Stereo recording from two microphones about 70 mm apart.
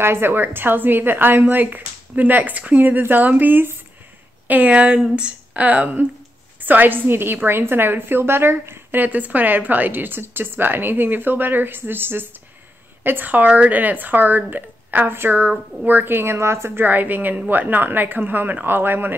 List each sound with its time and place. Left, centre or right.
0.0 s a woman's voice: right
16.8 s a woman's voice: right